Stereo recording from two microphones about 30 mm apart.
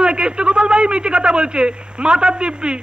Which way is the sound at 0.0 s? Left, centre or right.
Right.